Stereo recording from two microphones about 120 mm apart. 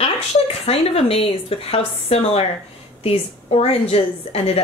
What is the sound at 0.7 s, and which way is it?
A woman's voice, 55° left (ahead or behind).